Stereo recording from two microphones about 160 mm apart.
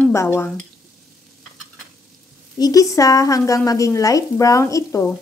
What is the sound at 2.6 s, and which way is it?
Speech, 20° left (ahead or behind).